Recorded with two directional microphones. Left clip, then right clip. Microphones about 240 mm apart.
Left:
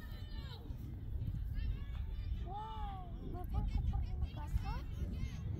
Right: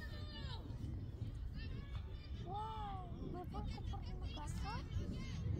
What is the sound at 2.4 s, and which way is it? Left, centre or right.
Vehicle, left.